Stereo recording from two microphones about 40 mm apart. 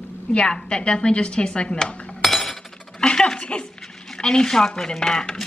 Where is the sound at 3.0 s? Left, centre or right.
Centre.